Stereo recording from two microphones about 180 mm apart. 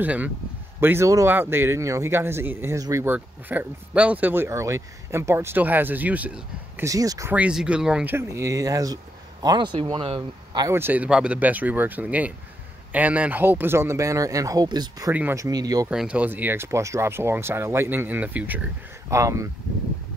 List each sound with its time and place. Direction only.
0.0 s a man's voice: 10° right (ahead or behind)
6.9 s a man's voice: 20° right (ahead or behind)
15.9 s a man's voice: 5° right (ahead or behind)